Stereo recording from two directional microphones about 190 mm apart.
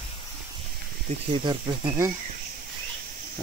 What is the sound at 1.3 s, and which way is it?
Speech, 25° right (ahead or behind).